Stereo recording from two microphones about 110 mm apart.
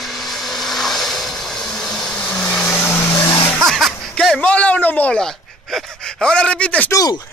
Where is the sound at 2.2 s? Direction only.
15° left (ahead or behind).